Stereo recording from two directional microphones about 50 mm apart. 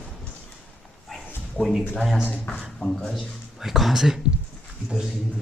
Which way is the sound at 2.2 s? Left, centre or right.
Left.